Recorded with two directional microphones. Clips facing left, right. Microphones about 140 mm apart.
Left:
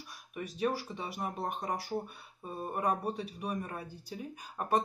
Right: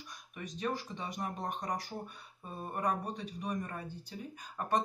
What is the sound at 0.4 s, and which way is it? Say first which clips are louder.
Speech: left 4 dB; 10° left (ahead or behind).